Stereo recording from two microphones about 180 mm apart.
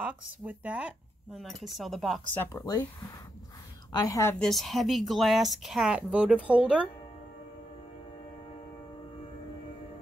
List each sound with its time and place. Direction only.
0.0 s a woman's voice: 5° right (ahead or behind); by 4.4 s 15° left (ahead or behind)
4.4 s speech: centre (ahead or behind)